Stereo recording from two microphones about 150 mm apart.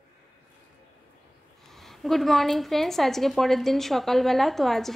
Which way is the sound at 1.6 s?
Centre (ahead or behind).